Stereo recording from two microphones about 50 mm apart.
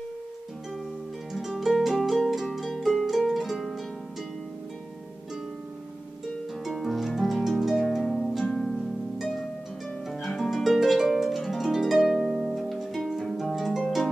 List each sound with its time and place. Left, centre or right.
1.3 s harp: centre
2.0 s music: centre
6.6 s harp: centre
8.0 s harp: centre
8.4 s music: centre
10.5 s harp: centre
13.6 s harp: centre